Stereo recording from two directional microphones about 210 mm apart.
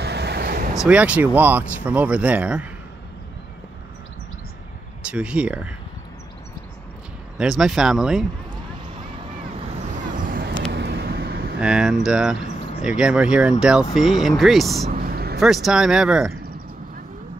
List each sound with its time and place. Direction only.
0.0 s vehicle: 50° right (ahead or behind)
0.8 s speech: 5° right (ahead or behind)
5.0 s speech: 5° right (ahead or behind)
7.3 s speech: centre (ahead or behind)
9.9 s vehicle: 40° right (ahead or behind)
11.6 s speech: 5° right (ahead or behind)
14.9 s vehicle: 45° right (ahead or behind)
15.4 s speech: centre (ahead or behind)